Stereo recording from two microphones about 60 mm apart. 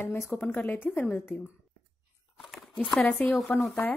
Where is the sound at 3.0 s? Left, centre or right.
Left.